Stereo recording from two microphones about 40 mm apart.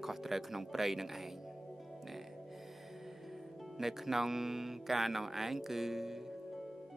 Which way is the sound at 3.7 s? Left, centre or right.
Centre.